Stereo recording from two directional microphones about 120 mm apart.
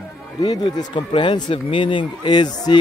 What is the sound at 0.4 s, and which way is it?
Speech, 35° left (ahead or behind).